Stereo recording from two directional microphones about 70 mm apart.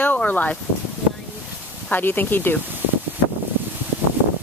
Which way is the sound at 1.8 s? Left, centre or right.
Left.